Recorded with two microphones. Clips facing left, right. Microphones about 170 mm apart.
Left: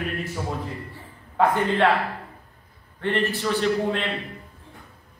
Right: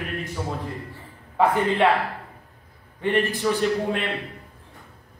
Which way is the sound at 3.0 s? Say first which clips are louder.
Right 2 dB; 10° right (ahead or behind).